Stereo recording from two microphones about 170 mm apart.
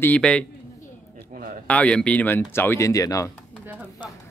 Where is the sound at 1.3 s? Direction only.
55° right (ahead or behind).